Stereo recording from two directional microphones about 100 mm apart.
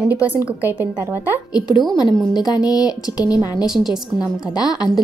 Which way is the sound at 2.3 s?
40° left (ahead or behind).